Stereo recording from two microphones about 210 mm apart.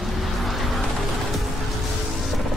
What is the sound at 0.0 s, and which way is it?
Vehicle, centre (ahead or behind).